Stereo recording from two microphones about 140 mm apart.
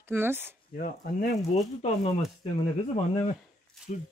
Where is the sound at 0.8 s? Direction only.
90° left.